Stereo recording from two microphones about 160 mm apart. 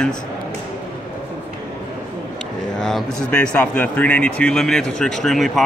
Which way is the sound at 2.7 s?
5° left (ahead or behind).